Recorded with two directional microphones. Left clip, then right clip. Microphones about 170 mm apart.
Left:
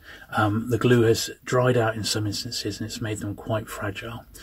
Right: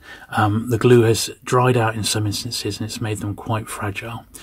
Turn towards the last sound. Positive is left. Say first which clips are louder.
# right 4 dB
turn(degrees=-35)  # may be behind; listen again after turning